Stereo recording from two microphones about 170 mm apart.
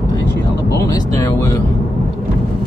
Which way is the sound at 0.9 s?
20° left (ahead or behind).